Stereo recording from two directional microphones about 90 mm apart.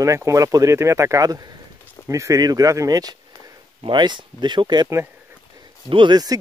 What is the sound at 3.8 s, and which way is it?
Speech, 60° right (ahead or behind).